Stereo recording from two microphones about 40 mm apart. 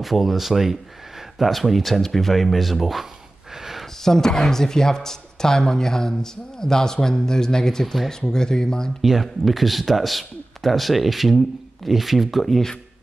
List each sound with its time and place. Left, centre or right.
0.0 s a man's voice: centre
3.5 s a sound: centre
3.8 s speech: centre
7.8 s a man's voice: centre
8.1 s speech: centre
9.0 s a man's voice: centre